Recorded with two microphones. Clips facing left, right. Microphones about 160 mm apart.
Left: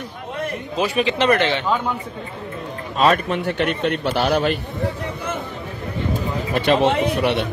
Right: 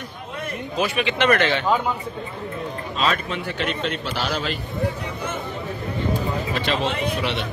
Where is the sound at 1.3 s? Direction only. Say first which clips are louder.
Even; 25° left (ahead or behind).